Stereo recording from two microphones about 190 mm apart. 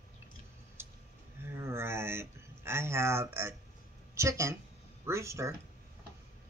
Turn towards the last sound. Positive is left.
turn(degrees=-15)  # may be behind; listen again after turning